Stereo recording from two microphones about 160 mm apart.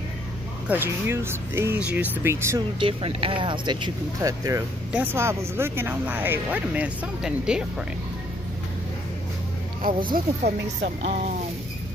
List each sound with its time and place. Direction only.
0.7 s speech: 15° right (ahead or behind)
2.8 s speech: 35° right (ahead or behind); by 7.6 s 5° right (ahead or behind)
10.1 s speech: 70° right (ahead or behind)
11.0 s speech: 45° right (ahead or behind)